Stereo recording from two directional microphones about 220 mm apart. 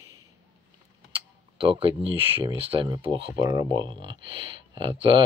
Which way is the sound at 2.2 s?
25° right (ahead or behind).